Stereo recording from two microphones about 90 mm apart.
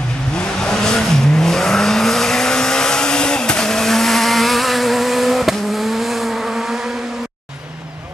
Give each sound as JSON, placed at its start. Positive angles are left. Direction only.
{"t": 0.4, "sound": "vehicle", "side_deg": 10}